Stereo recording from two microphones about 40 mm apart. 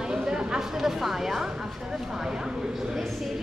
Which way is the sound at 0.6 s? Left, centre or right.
Centre.